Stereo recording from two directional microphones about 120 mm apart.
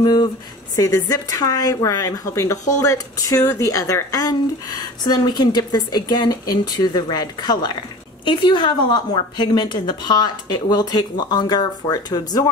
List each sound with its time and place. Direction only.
0.0 s a woman's voice: 35° left (ahead or behind)